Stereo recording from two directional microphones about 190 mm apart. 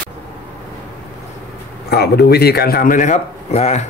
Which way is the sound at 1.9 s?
60° left (ahead or behind).